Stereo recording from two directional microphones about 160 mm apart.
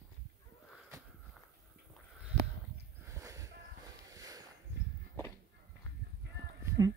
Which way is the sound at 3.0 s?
20° right (ahead or behind).